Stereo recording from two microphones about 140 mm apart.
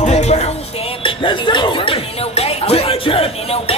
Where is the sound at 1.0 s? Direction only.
35° left (ahead or behind).